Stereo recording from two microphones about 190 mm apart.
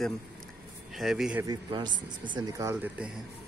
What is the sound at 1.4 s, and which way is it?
Speech, 20° right (ahead or behind).